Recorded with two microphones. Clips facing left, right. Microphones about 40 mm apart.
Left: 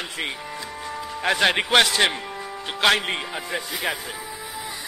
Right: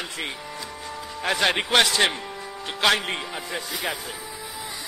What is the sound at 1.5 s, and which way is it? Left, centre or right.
Speech, centre.